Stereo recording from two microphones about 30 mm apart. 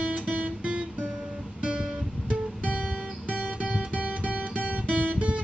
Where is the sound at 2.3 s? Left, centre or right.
Right.